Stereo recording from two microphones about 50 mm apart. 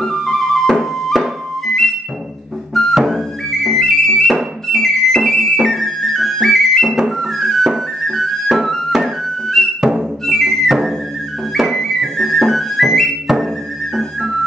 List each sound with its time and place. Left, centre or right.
0.0 s music: centre
2.9 s music: centre
6.9 s music: centre
7.2 s flute: centre
9.8 s music: centre
10.2 s music: centre
11.5 s flute: centre